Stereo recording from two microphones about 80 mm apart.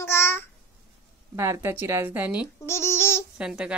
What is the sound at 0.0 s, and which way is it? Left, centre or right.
Babbling, left.